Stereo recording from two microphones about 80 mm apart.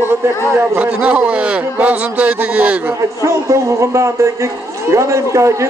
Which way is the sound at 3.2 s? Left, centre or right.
Right.